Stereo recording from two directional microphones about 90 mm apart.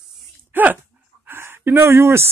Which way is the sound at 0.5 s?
20° right (ahead or behind).